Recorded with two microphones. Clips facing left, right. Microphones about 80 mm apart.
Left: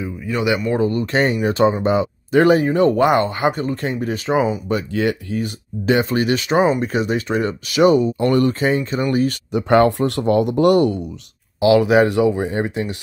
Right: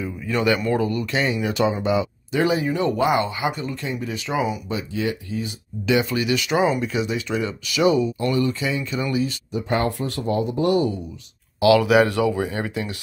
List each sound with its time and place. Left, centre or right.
0.3 s a man's voice: centre
0.8 s speech: left
4.6 s speech: left
5.9 s speech: left
6.9 s speech: left
9.5 s speech: left
11.6 s speech: left